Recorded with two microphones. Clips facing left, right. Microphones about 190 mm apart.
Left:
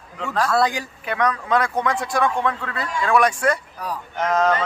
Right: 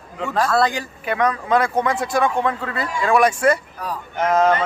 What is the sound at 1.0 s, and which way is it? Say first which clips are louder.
A man's voice: right 2 dB; 5° right (ahead or behind).